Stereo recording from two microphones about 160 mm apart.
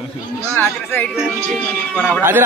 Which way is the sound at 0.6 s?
10° left (ahead or behind).